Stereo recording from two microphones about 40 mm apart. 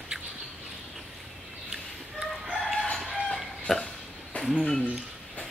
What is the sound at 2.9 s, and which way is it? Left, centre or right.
Chicken, centre.